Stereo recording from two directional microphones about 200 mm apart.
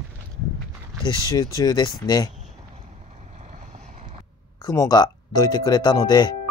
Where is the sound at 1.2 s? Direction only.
20° left (ahead or behind).